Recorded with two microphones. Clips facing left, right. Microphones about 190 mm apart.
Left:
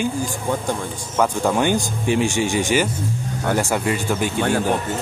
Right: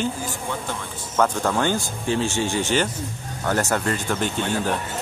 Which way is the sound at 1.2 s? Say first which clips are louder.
Left 2 dB; 15° left (ahead or behind).